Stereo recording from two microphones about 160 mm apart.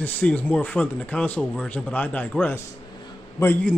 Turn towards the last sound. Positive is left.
turn(degrees=15)  # may be behind; listen again after turning